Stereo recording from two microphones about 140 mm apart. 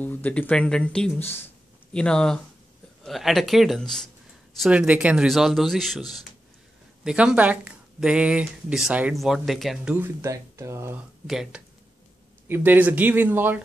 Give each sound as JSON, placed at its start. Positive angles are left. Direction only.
{"t": 0.0, "sound": "speech", "side_deg": 10}
{"t": 4.6, "sound": "speech", "side_deg": -10}
{"t": 7.1, "sound": "a woman's voice", "side_deg": -5}
{"t": 9.9, "sound": "speech", "side_deg": -20}
{"t": 11.2, "sound": "speech", "side_deg": -5}
{"t": 12.4, "sound": "a woman's voice", "side_deg": -15}